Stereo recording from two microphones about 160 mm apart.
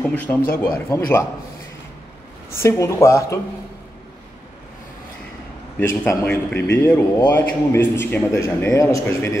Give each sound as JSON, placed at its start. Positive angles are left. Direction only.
{"t": 0.0, "sound": "a man's voice", "side_deg": 10}
{"t": 2.5, "sound": "speech", "side_deg": 15}
{"t": 5.8, "sound": "a man's voice", "side_deg": 15}